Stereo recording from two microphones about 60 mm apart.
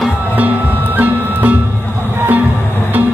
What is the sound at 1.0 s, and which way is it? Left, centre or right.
Music, right.